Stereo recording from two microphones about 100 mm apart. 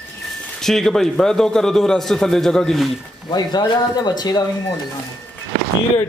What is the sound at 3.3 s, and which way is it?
Speech, 45° left (ahead or behind).